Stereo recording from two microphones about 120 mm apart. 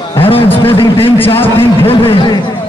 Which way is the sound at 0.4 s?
20° left (ahead or behind).